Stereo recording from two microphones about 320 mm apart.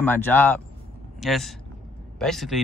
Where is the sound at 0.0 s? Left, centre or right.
Centre.